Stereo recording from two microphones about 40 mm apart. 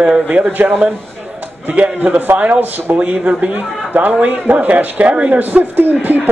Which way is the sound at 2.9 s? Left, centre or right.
Right.